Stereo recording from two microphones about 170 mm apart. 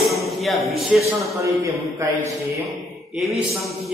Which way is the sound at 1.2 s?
20° right (ahead or behind).